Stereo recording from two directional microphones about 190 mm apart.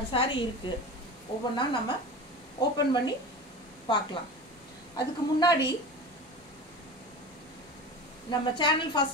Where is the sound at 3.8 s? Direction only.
25° left (ahead or behind).